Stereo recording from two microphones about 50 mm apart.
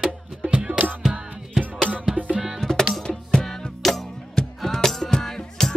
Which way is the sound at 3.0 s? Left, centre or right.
Centre.